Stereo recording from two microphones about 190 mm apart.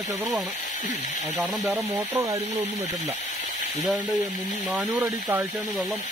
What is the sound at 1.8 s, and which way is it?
Speech, 15° right (ahead or behind).